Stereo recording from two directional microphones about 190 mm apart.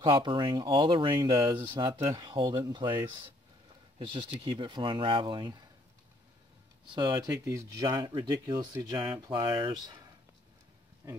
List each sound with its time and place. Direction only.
0.0 s speech: 25° right (ahead or behind)
6.9 s speech: 25° right (ahead or behind)